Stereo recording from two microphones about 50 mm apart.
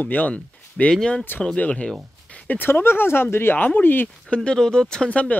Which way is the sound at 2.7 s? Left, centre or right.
Left.